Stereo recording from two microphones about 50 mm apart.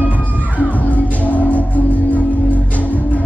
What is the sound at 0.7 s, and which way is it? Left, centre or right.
Music, left.